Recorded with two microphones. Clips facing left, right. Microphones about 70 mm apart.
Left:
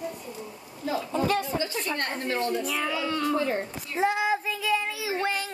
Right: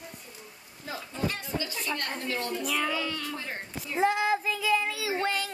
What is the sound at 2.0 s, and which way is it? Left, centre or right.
Speech, left.